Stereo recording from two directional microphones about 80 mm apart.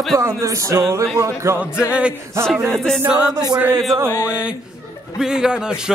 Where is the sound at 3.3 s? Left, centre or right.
Right.